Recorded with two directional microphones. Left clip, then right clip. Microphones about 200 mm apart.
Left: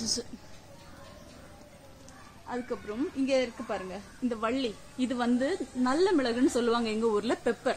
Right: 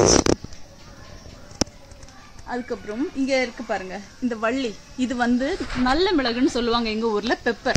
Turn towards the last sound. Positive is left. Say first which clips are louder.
# right 6 dB
turn(degrees=-30)  # may be behind; listen again after turning